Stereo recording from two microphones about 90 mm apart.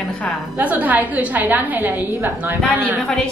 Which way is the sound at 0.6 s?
20° right (ahead or behind).